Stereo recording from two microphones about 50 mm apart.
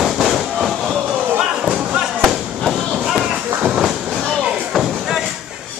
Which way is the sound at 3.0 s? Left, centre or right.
Centre.